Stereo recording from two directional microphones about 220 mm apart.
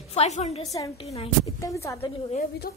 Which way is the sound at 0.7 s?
15° left (ahead or behind).